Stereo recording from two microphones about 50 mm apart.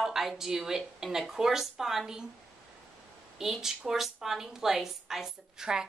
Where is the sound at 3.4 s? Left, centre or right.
Centre.